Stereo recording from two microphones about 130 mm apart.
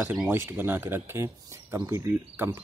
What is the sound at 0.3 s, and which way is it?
Speech, 20° right (ahead or behind).